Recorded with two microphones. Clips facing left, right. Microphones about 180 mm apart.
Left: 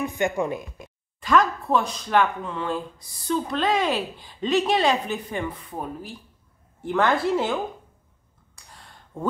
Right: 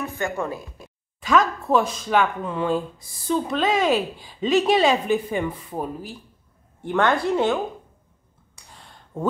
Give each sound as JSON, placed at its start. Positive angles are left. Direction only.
{"t": 0.0, "sound": "a woman's voice", "side_deg": 15}
{"t": 1.2, "sound": "a woman's voice", "side_deg": 0}
{"t": 8.6, "sound": "a sound", "side_deg": 0}